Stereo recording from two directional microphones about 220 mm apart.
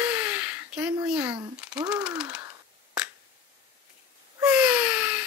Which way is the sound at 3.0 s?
5° right (ahead or behind).